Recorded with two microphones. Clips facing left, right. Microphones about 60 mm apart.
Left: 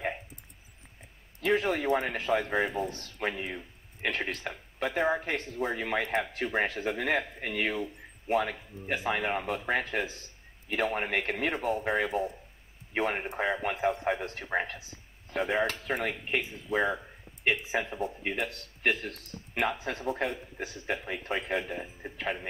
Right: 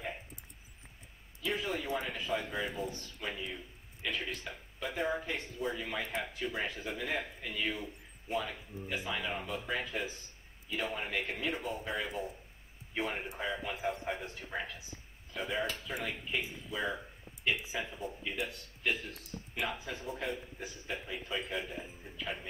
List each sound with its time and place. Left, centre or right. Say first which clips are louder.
1.4 s a man's voice: left 8 dB; left